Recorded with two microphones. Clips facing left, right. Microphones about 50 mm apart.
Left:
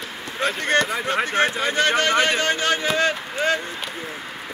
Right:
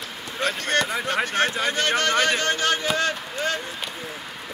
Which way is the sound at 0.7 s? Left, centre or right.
Centre.